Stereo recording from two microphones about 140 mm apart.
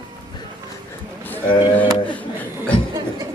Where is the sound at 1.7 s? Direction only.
10° left (ahead or behind).